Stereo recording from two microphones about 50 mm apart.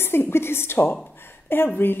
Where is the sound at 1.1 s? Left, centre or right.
Left.